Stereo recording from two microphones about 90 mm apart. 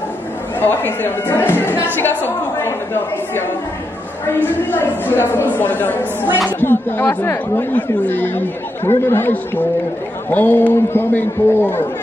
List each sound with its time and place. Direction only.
0.6 s a woman's voice: 20° left (ahead or behind)